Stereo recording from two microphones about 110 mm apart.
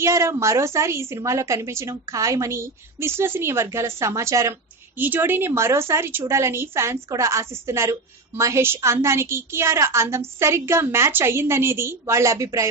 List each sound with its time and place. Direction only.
0.0 s a woman's voice: 25° right (ahead or behind)